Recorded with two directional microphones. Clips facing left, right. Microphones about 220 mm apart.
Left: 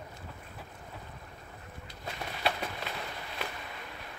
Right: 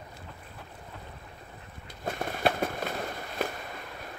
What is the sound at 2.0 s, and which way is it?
Fireworks, 50° right (ahead or behind).